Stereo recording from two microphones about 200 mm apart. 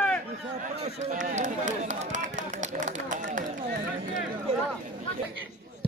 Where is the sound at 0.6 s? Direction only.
35° right (ahead or behind).